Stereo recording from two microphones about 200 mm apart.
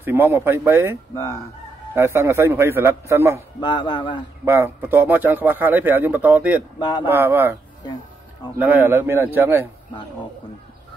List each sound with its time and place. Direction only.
0.0 s a man's voice: 10° right (ahead or behind)
1.1 s fowl: 10° left (ahead or behind)
2.0 s a man's voice: 15° right (ahead or behind)
3.6 s speech: 20° left (ahead or behind)
4.5 s a man's voice: 10° right (ahead or behind)
6.8 s speech: 20° left (ahead or behind)
7.1 s a man's voice: 10° right (ahead or behind)
8.5 s a man's voice: 10° right (ahead or behind)